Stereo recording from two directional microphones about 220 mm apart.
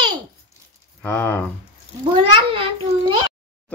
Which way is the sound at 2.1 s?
25° right (ahead or behind).